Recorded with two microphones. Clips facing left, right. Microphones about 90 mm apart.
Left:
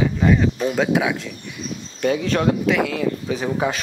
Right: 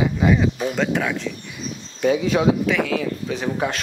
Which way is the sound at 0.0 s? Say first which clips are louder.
Left 1 dB; 5° right (ahead or behind).